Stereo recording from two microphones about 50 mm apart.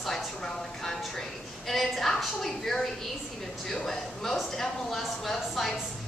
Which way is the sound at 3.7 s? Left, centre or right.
Centre.